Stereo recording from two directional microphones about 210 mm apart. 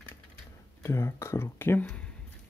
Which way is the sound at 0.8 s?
10° left (ahead or behind).